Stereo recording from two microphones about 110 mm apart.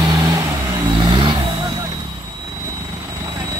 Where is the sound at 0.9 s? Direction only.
45° right (ahead or behind).